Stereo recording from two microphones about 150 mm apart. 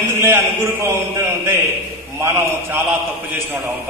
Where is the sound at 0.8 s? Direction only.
20° right (ahead or behind).